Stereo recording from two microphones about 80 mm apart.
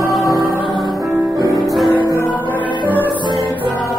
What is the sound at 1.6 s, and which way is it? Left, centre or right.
Music, centre.